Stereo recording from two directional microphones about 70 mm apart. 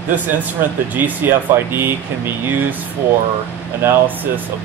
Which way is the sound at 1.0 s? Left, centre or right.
Right.